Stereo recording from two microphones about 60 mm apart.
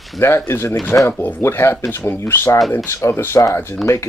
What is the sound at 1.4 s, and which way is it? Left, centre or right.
Speech, left.